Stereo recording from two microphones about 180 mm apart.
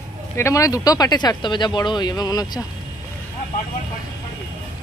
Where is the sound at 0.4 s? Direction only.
15° left (ahead or behind).